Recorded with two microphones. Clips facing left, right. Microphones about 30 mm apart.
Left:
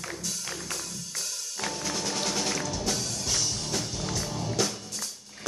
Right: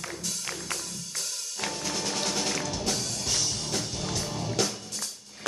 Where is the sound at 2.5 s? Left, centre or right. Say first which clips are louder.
Even; right.